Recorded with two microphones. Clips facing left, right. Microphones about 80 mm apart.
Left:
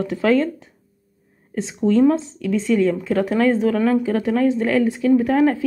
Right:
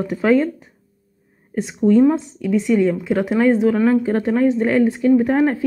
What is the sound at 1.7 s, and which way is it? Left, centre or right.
A woman's voice, centre.